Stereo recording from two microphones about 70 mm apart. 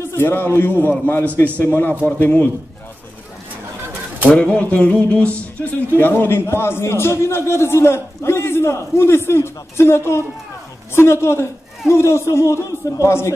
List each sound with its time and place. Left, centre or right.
0.1 s a man's voice: left
4.3 s speech: left